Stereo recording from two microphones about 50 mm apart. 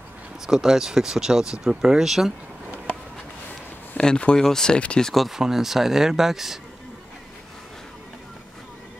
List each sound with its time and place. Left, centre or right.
0.5 s speech: centre
4.0 s speech: centre
4.7 s speech: left
5.0 s speech: centre